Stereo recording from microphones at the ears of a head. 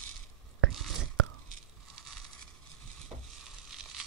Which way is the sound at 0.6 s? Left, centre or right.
Right.